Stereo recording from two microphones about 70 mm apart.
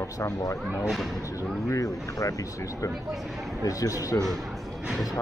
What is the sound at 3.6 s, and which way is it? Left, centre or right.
Speech, left.